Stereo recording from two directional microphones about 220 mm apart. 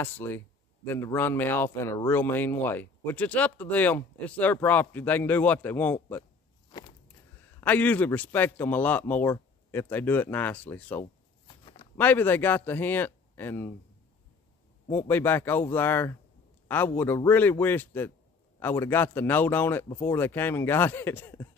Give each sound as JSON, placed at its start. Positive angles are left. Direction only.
{"t": 0.0, "sound": "speech", "side_deg": 10}
{"t": 7.6, "sound": "speech", "side_deg": 5}
{"t": 11.4, "sound": "a sound", "side_deg": 20}
{"t": 12.0, "sound": "speech", "side_deg": 10}
{"t": 14.9, "sound": "speech", "side_deg": 10}